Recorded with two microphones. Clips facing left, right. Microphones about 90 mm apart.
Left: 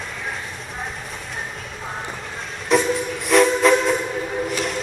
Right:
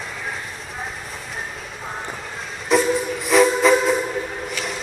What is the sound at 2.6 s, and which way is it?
Train, centre (ahead or behind).